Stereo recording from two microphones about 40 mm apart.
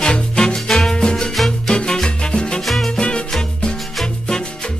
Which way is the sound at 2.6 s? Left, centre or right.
Centre.